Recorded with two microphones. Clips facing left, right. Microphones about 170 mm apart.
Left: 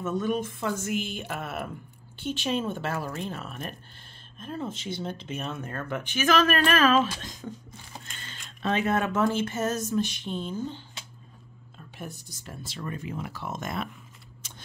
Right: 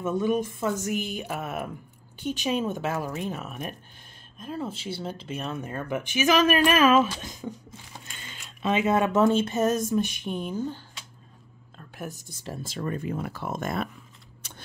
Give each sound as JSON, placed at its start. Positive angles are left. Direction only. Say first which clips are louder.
{"t": 0.0, "sound": "speech", "louder": "right 3 dB", "side_deg": -10}
{"t": 12.1, "sound": "speech", "louder": "right 5 dB", "side_deg": -40}